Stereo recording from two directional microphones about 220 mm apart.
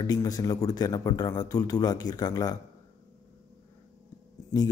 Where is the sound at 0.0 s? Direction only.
15° left (ahead or behind).